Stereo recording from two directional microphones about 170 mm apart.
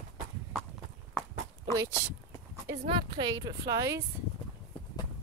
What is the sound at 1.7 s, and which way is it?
Speech, 20° right (ahead or behind).